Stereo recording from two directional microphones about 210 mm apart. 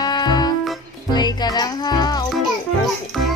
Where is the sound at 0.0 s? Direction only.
20° left (ahead or behind).